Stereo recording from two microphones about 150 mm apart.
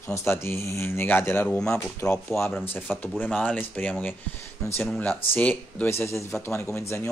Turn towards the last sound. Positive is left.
turn(degrees=15)  # may be behind; listen again after turning